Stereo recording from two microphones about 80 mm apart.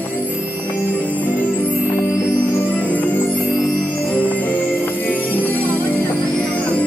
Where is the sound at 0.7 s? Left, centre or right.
Left.